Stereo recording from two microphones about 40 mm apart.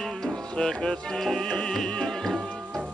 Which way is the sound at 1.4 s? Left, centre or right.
Left.